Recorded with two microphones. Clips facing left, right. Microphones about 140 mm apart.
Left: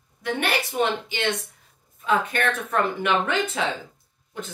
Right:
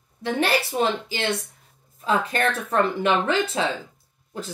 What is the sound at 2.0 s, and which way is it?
A woman's voice, 30° right (ahead or behind).